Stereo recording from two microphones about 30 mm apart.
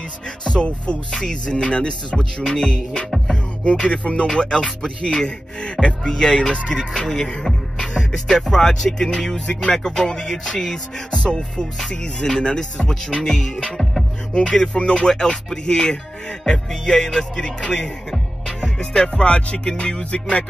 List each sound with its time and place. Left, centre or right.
0.5 s speech: left
1.1 s music: left
1.5 s speech: left
2.4 s music: centre
2.7 s speech: left
6.0 s music: left
7.1 s music: centre
7.8 s music: left
14.3 s speech: left
14.7 s music: left
16.4 s speech: left
18.6 s music: left
19.2 s speech: left